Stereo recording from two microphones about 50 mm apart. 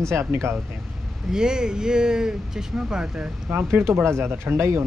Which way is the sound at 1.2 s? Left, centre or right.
Centre.